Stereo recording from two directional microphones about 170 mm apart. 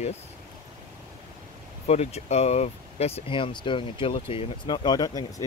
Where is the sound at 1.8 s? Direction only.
40° left (ahead or behind); by 5.5 s 20° left (ahead or behind).